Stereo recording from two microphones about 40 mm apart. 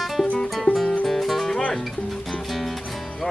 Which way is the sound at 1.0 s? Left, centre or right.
Centre.